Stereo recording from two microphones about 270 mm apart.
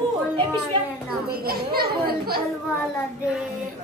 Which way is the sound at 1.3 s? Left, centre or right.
Right.